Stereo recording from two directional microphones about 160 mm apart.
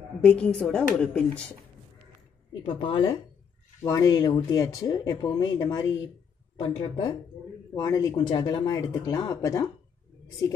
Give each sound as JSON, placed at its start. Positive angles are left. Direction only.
{"t": 0.2, "sound": "speech", "side_deg": 5}
{"t": 2.6, "sound": "speech", "side_deg": 30}
{"t": 3.8, "sound": "speech", "side_deg": 20}
{"t": 6.5, "sound": "speech", "side_deg": 35}